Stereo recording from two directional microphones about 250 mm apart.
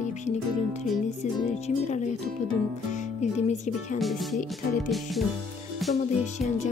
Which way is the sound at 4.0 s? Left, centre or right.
Centre.